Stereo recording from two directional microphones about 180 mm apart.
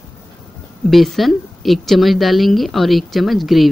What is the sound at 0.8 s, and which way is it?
A woman's voice, centre (ahead or behind).